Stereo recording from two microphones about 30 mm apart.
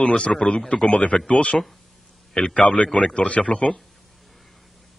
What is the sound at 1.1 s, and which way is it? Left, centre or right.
A man's voice, left.